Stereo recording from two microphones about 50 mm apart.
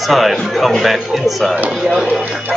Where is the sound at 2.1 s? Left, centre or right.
Right.